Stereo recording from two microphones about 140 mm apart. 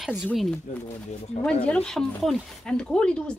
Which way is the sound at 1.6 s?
5° left (ahead or behind).